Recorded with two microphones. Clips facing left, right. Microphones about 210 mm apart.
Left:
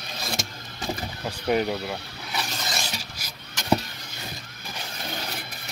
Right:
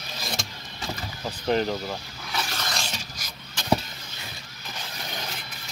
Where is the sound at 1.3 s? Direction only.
10° left (ahead or behind).